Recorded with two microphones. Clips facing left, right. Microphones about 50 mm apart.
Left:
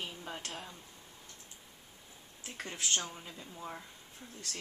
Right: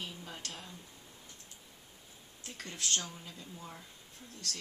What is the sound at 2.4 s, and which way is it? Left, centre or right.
Speech, centre.